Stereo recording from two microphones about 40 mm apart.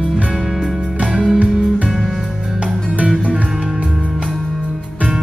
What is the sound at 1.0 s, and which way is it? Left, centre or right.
Music, right.